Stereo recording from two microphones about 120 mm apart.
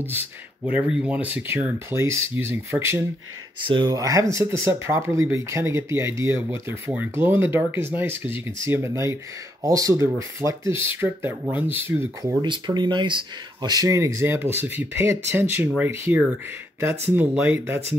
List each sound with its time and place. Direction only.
0.7 s speech: 10° right (ahead or behind)
3.6 s speech: 45° right (ahead or behind)
3.9 s speech: 30° right (ahead or behind)